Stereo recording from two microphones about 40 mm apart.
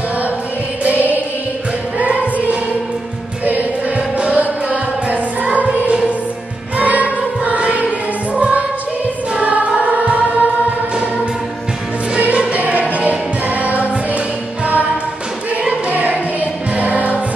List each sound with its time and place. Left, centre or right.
0.8 s music: right
6.8 s choir: right
12.5 s music: right
15.9 s music: right